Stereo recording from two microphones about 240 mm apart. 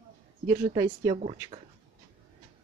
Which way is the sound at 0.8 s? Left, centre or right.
Centre.